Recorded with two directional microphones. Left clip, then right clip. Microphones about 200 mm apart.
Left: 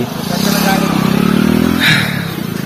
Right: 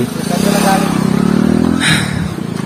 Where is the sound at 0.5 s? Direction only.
45° right (ahead or behind).